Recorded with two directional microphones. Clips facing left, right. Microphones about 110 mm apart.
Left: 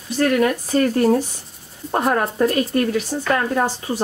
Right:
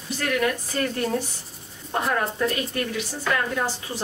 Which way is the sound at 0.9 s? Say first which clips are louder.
Left 9 dB; 40° left (ahead or behind).